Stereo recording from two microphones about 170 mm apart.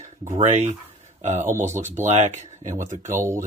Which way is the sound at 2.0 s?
40° right (ahead or behind).